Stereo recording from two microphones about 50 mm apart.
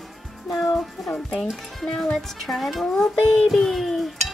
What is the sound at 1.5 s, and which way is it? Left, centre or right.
A child's voice, centre.